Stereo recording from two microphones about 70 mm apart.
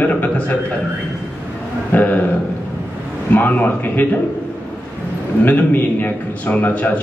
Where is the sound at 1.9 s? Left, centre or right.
Left.